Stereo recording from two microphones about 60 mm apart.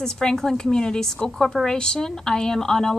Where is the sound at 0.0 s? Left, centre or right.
Centre.